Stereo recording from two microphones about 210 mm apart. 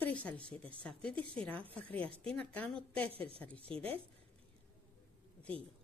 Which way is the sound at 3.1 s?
25° right (ahead or behind).